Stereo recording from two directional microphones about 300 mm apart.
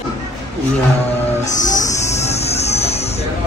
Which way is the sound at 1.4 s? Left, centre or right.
Left.